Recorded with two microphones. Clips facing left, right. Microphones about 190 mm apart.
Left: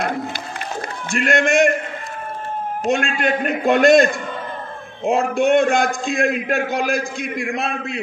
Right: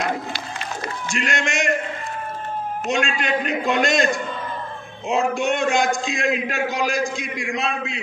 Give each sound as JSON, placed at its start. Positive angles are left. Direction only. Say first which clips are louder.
{"t": 1.0, "sound": "a man's voice", "louder": "left 8 dB", "side_deg": 55}
{"t": 2.9, "sound": "a man's voice", "louder": "left 3 dB", "side_deg": 55}